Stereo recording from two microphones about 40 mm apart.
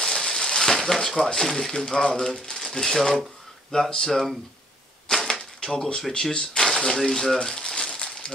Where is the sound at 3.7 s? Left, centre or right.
Left.